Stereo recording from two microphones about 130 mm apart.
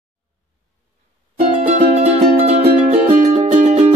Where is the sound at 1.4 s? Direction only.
60° right (ahead or behind).